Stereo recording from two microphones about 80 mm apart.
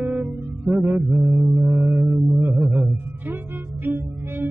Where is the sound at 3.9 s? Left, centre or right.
Right.